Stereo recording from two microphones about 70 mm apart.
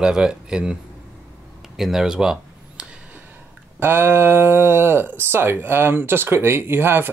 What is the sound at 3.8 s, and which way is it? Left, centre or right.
Speech, right.